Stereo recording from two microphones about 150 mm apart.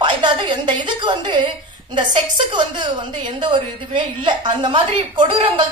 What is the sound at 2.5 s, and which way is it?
A woman's voice, 30° right (ahead or behind).